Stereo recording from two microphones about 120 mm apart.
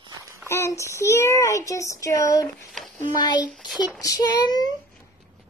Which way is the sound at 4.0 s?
30° left (ahead or behind).